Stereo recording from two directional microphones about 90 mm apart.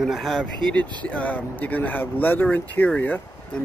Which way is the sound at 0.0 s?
Centre (ahead or behind).